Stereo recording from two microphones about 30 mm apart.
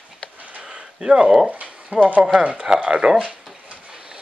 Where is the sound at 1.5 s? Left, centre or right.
Right.